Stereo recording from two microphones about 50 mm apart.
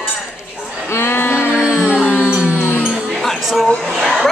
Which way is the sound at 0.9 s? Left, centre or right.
Left.